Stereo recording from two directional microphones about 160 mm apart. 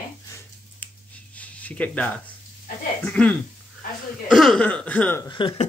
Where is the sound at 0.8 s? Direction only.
10° left (ahead or behind).